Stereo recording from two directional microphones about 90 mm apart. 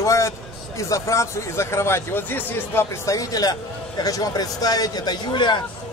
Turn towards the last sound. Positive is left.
turn(degrees=55)  # may be behind; listen again after turning